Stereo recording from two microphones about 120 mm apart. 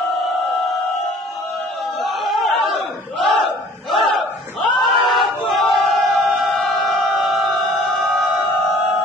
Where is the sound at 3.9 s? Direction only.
Centre (ahead or behind).